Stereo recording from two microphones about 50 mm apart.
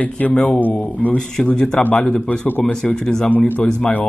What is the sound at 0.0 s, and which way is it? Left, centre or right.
Speech, left.